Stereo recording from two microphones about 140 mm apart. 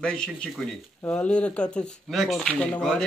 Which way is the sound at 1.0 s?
20° left (ahead or behind).